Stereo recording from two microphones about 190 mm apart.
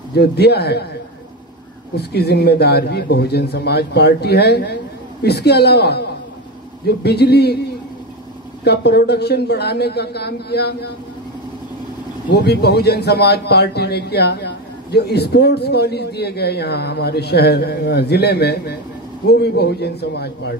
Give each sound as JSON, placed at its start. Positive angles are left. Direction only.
{"t": 0.1, "sound": "a man's voice", "side_deg": 60}
{"t": 2.0, "sound": "a man's voice", "side_deg": 60}
{"t": 8.6, "sound": "a man's voice", "side_deg": 60}
{"t": 12.3, "sound": "a man's voice", "side_deg": 60}